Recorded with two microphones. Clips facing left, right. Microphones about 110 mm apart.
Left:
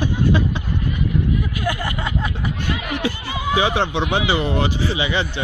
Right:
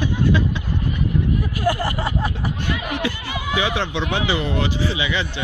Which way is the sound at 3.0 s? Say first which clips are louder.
Left 2 dB; 30° left (ahead or behind).